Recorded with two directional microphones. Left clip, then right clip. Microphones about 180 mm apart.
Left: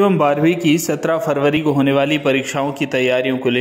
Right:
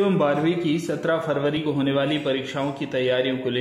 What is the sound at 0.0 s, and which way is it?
A man's voice, 25° left (ahead or behind).